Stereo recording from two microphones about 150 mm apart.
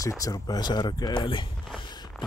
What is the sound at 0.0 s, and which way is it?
Speech, 20° left (ahead or behind).